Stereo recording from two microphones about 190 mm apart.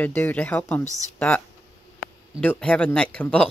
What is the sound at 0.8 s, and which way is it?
Speech, 15° right (ahead or behind).